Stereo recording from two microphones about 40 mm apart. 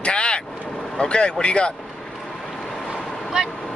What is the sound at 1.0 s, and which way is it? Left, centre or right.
Speech, left.